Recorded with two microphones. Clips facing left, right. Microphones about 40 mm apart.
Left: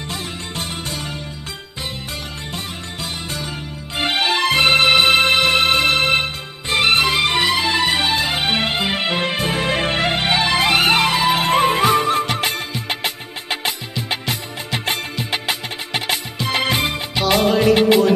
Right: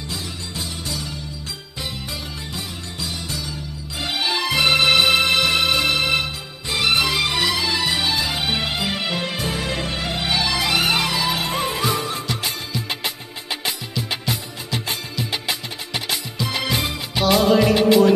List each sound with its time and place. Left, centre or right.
0.1 s music: left
2.5 s music: left
14.2 s music: left